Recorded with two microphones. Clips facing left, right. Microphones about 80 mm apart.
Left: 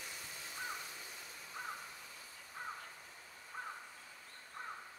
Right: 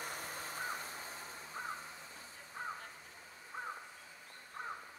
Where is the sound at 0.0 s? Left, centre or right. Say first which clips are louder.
Right 6 dB; right; by 3.7 s centre.